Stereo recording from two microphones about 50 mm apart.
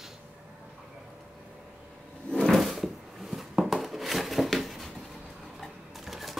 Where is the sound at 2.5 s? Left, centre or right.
Centre.